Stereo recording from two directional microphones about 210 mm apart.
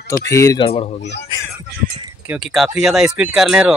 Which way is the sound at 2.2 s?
Centre (ahead or behind).